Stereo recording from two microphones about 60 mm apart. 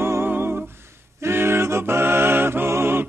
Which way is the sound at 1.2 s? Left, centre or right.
Right.